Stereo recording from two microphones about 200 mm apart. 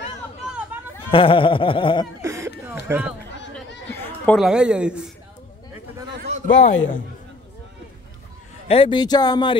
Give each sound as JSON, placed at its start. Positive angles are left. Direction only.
{"t": 1.1, "sound": "speech", "side_deg": 25}
{"t": 2.2, "sound": "a sound", "side_deg": -15}
{"t": 3.9, "sound": "a sound", "side_deg": 10}
{"t": 4.4, "sound": "a woman's voice", "side_deg": -5}
{"t": 6.4, "sound": "a man's voice", "side_deg": 40}
{"t": 8.6, "sound": "speech", "side_deg": 25}